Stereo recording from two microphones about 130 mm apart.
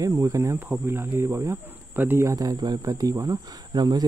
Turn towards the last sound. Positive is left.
turn(degrees=-30)  # may be behind; listen again after turning